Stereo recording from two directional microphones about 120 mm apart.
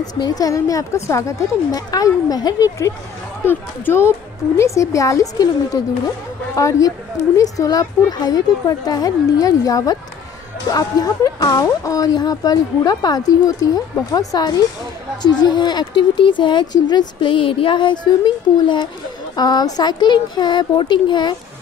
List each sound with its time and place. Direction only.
0.2 s speech: 30° left (ahead or behind)
3.4 s a woman's voice: 20° left (ahead or behind); by 21.4 s 40° left (ahead or behind)